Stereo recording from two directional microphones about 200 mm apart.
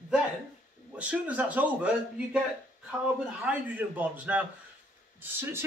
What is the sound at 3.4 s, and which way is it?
Speech, 10° right (ahead or behind).